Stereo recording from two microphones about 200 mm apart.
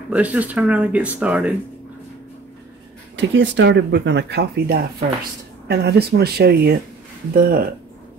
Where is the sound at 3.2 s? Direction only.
65° right (ahead or behind).